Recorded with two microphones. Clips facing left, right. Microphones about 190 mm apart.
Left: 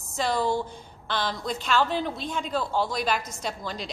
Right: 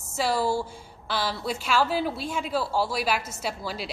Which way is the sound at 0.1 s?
5° right (ahead or behind).